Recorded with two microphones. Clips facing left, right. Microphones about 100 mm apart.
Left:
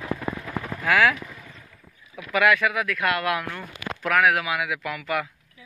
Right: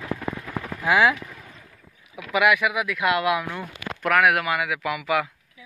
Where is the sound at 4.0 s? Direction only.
Centre (ahead or behind).